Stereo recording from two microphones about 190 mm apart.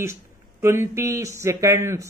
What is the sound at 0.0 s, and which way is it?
Speech, 15° right (ahead or behind).